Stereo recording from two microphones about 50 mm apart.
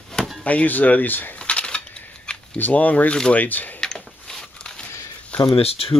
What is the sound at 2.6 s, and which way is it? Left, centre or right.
Speech, left.